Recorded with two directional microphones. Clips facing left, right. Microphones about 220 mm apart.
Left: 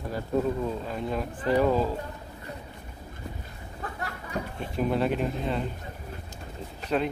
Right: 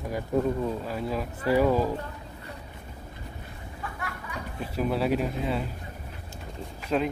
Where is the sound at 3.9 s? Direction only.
35° left (ahead or behind).